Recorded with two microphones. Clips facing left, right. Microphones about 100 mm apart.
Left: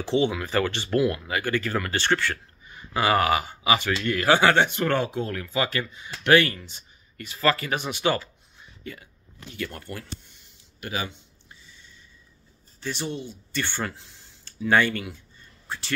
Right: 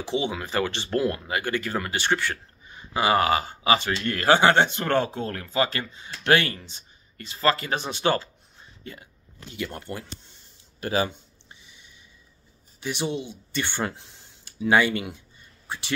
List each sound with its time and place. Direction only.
0.0 s speech: 15° right (ahead or behind)
10.8 s speech: 35° right (ahead or behind)
11.6 s a sound: 15° right (ahead or behind)
12.8 s speech: 15° right (ahead or behind)